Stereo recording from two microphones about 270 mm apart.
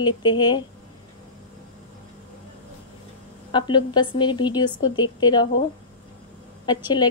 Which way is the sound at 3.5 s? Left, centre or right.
Centre.